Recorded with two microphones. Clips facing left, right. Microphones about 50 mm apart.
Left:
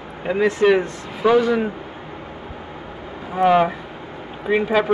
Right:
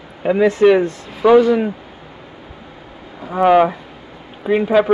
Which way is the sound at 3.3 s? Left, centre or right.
Centre.